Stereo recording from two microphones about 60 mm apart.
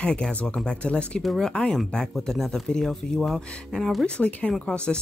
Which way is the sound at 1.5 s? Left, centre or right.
Centre.